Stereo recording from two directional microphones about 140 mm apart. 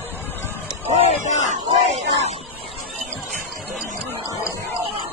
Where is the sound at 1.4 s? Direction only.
50° right (ahead or behind).